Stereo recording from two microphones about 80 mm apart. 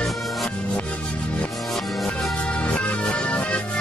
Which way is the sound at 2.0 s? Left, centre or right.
Centre.